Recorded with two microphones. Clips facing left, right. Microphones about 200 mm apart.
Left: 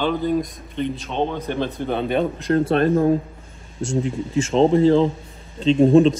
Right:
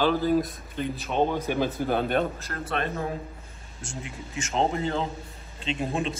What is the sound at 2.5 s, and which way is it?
Speech, 30° left (ahead or behind).